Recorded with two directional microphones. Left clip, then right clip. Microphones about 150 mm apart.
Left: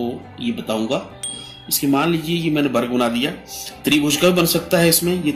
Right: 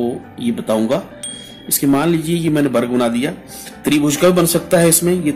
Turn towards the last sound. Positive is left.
turn(degrees=-35)  # may be behind; listen again after turning